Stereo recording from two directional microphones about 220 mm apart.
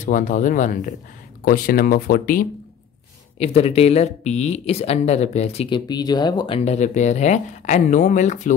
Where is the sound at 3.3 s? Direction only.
30° left (ahead or behind).